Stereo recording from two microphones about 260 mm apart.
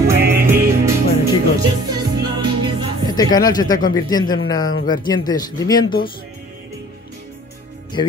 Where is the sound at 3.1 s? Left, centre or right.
Centre.